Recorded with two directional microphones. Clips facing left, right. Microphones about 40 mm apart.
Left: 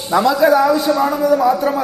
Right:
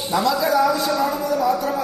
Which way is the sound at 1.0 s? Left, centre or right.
Left.